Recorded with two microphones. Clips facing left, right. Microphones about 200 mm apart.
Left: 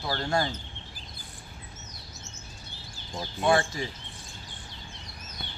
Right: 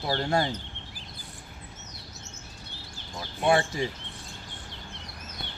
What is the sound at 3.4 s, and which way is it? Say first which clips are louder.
Speech: right 1 dB; 25° right (ahead or behind).